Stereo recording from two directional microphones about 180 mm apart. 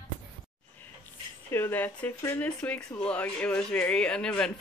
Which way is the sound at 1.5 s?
10° left (ahead or behind).